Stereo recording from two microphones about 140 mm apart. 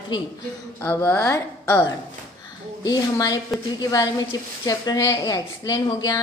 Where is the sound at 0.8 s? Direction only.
15° left (ahead or behind).